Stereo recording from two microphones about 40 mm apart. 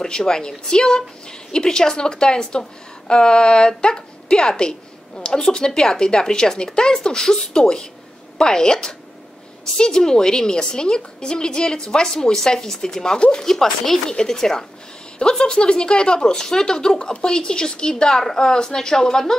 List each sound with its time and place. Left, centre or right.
0.0 s a woman's voice: centre
13.5 s speech: centre